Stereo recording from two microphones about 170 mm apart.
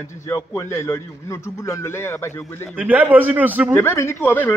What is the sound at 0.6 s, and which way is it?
Speech, 15° left (ahead or behind).